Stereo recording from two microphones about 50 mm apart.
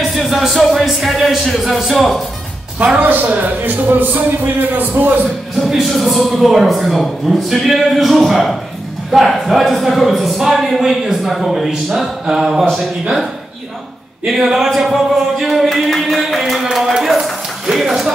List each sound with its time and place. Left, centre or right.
0.1 s a sound: centre
0.6 s speech: centre
3.0 s speech: right
5.6 s speech: centre
14.2 s speech: centre